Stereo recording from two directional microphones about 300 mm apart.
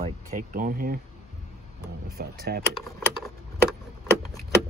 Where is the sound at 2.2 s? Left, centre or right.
Right.